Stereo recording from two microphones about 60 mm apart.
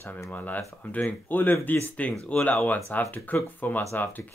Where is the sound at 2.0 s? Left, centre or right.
Left.